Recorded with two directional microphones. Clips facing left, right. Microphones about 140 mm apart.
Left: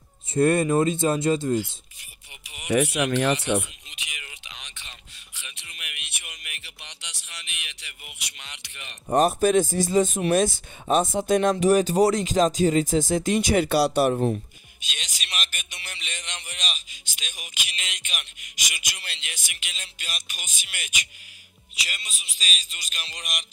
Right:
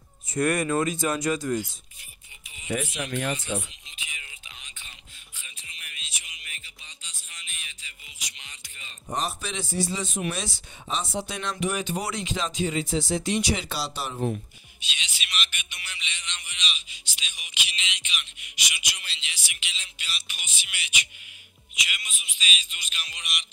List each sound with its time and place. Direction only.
0.3 s speech: 30° left (ahead or behind)
2.4 s a sound: 75° left (ahead or behind); by 10.2 s 45° left (ahead or behind)
10.3 s speech: 50° left (ahead or behind)
14.8 s speech: 45° left (ahead or behind)
15.3 s music: 40° left (ahead or behind)
21.7 s speech: 35° left (ahead or behind)